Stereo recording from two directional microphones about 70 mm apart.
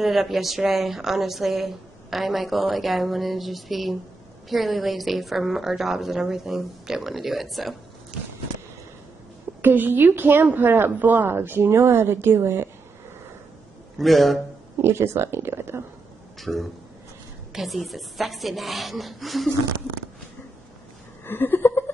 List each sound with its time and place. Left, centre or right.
0.0 s speech: centre
8.1 s walk: centre
9.6 s a woman's voice: right
13.9 s speech: centre
14.8 s a woman's voice: right
16.3 s speech: centre
21.3 s chuckle: left